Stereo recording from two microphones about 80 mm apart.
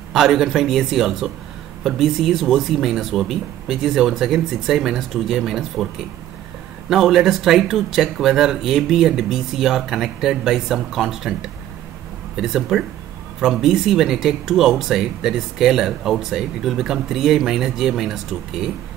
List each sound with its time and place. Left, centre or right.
0.1 s speech: centre
6.9 s speech: centre